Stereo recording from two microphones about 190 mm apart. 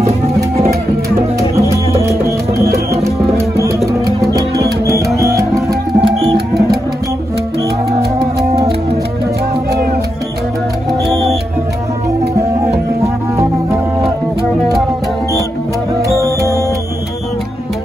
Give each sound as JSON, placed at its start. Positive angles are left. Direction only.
{"t": 2.9, "sound": "music", "side_deg": -15}
{"t": 4.8, "sound": "music", "side_deg": -15}
{"t": 5.9, "sound": "music", "side_deg": -30}
{"t": 13.0, "sound": "music", "side_deg": -15}